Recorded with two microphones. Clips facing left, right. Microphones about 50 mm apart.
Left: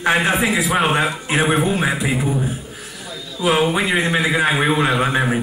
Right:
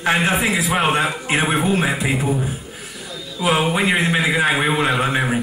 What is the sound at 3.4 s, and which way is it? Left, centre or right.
A man's voice, centre.